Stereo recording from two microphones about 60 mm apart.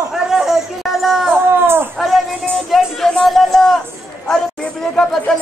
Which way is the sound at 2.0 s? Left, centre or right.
Centre.